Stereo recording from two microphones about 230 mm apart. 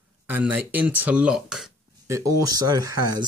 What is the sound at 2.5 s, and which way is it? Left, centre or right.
Speech, centre.